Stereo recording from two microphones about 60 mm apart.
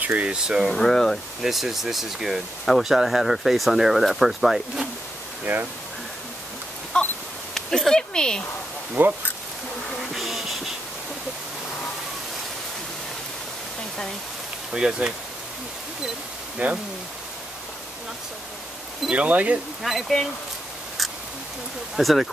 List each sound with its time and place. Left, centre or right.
0.0 s speech: right
0.7 s speech: centre
5.4 s speech: right
6.9 s a sound: centre
7.5 s speech: centre
9.0 s speech: right
10.1 s bee: centre
14.7 s speech: centre
16.6 s speech: right
19.0 s speech: right
19.8 s speech: centre
21.9 s speech: centre